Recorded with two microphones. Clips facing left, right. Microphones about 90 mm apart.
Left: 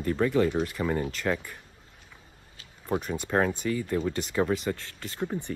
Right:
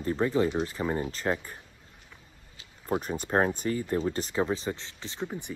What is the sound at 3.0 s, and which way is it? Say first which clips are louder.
Speech: even; 40° right (ahead or behind).